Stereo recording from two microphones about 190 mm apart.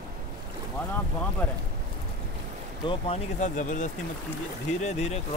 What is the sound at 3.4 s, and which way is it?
Speech, 40° left (ahead or behind).